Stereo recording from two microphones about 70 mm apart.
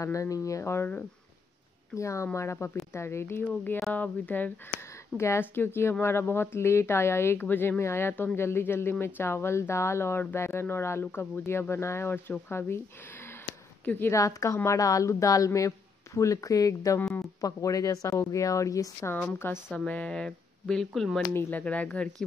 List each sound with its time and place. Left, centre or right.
0.0 s a woman's voice: left
2.0 s a woman's voice: left
5.1 s speech: left
5.4 s speech: left
13.8 s speech: left
14.1 s a woman's voice: left
19.7 s speech: centre
21.3 s speech: left